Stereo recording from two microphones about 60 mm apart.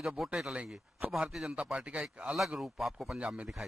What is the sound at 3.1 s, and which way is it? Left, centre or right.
Speech, centre.